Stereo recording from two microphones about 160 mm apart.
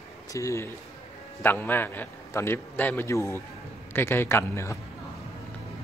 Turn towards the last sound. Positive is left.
turn(degrees=15)  # may be behind; listen again after turning